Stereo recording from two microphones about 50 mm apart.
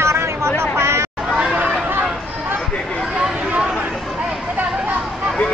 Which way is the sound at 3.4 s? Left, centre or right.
Right.